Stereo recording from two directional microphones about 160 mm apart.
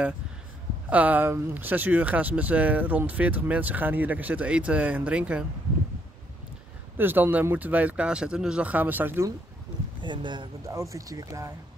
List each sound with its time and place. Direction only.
0.8 s speech: 10° right (ahead or behind)
7.0 s speech: 10° right (ahead or behind)
10.0 s speech: 30° right (ahead or behind)